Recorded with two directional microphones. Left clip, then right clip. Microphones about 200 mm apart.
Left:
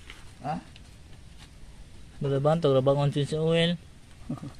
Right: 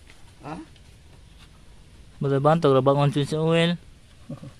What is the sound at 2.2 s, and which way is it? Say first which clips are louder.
Speech: right 5 dB; 40° right (ahead or behind).